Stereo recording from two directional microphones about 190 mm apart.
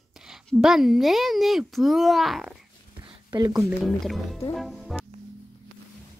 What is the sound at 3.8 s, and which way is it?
Speech, centre (ahead or behind).